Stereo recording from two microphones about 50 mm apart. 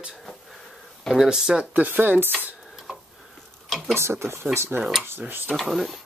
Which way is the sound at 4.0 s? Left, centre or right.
Right.